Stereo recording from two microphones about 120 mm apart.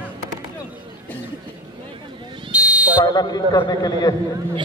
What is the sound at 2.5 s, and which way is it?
Buzzer, 10° right (ahead or behind).